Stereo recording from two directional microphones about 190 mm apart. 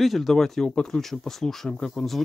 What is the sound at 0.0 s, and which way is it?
Speech, centre (ahead or behind).